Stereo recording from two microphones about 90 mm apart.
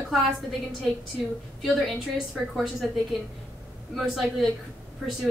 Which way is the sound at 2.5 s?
Centre (ahead or behind).